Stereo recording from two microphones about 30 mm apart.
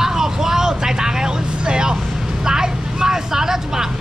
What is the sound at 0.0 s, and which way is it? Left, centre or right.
Vehicle, centre.